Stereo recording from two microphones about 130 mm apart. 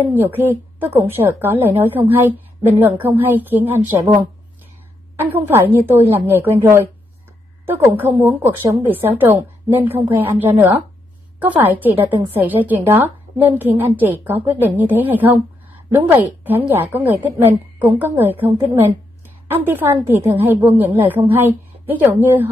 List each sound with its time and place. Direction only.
0.1 s a woman's voice: 15° right (ahead or behind)